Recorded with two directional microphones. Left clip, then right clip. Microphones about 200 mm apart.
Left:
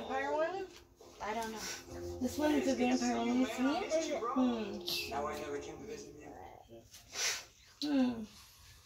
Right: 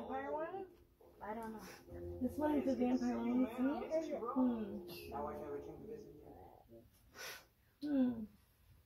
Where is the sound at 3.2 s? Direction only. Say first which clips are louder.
Left 4 dB; 45° left (ahead or behind).